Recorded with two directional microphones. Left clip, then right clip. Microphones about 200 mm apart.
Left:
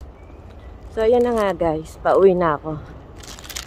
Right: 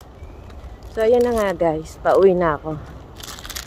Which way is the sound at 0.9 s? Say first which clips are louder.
Even; 15° left (ahead or behind).